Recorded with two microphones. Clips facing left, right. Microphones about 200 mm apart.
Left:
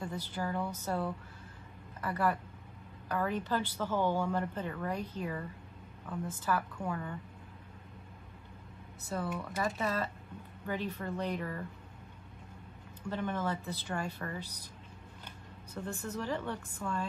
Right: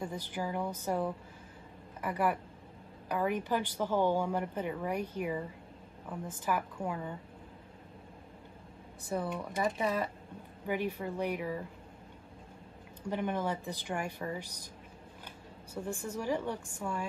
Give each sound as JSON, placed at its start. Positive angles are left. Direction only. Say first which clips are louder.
{"t": 0.0, "sound": "speech", "louder": "right 1 dB", "side_deg": -10}
{"t": 9.1, "sound": "speech", "louder": "right 2 dB", "side_deg": -15}
{"t": 13.1, "sound": "speech", "louder": "right 2 dB", "side_deg": -15}
{"t": 15.7, "sound": "speech", "louder": "right 1 dB", "side_deg": -10}